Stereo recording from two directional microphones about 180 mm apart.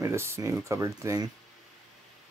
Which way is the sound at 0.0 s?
15° right (ahead or behind).